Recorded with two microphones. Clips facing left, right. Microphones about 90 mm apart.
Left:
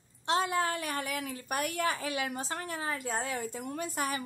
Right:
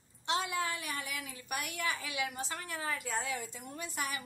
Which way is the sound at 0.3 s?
40° left (ahead or behind).